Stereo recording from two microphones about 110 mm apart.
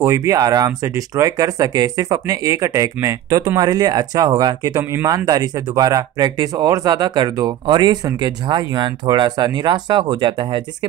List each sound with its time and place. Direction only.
0.0 s speech: 30° right (ahead or behind); by 10.9 s 45° right (ahead or behind)